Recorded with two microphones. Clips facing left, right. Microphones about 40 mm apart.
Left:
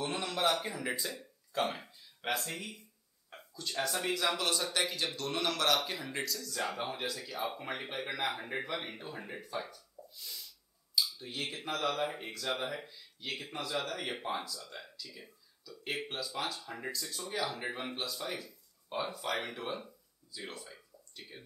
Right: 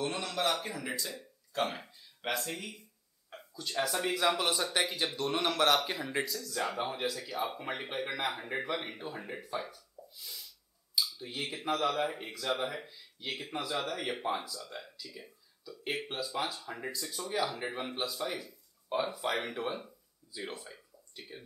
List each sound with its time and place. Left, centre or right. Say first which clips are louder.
0.0 s a man's voice: even; centre
1.8 s speech: right 2 dB; centre
9.7 s a sound: right 1 dB; centre
11.0 s speech: even; centre
14.6 s speech: right 3 dB; centre
15.0 s speech: right 2 dB; centre